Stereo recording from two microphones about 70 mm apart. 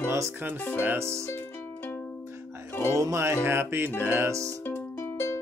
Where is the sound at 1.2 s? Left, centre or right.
Left.